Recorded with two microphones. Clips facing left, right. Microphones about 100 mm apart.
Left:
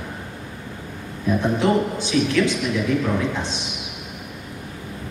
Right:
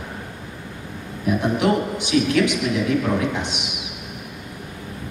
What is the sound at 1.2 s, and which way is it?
A man's voice, 15° right (ahead or behind).